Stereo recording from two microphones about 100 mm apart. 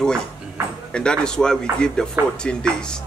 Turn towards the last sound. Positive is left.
turn(degrees=10)  # may be behind; listen again after turning